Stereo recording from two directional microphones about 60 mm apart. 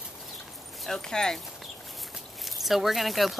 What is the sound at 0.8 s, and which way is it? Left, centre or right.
Speech, centre.